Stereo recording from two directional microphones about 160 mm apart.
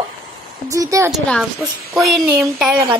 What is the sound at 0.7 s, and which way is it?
Speech, 20° right (ahead or behind).